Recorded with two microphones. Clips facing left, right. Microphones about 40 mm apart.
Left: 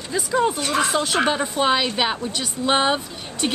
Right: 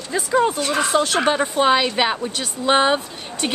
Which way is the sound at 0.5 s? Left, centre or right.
Centre.